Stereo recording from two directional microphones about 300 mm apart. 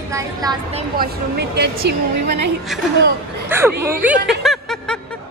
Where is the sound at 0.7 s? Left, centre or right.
Right.